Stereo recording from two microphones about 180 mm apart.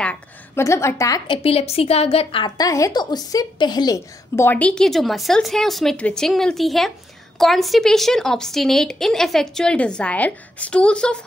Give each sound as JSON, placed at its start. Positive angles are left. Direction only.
{"t": 0.0, "sound": "a woman's voice", "side_deg": 10}